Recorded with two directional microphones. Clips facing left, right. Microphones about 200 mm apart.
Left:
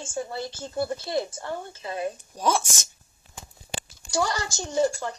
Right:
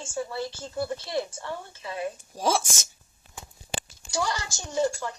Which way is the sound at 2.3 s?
Centre (ahead or behind).